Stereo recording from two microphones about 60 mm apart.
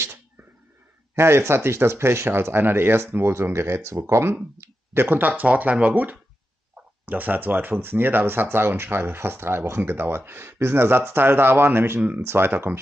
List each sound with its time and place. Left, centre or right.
1.1 s speech: right